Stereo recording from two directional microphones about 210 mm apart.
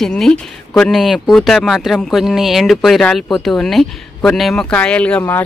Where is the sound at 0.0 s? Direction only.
5° left (ahead or behind).